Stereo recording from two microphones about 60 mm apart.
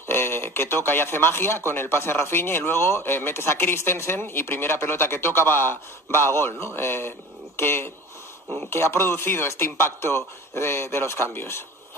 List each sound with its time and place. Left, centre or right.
0.1 s a man's voice: left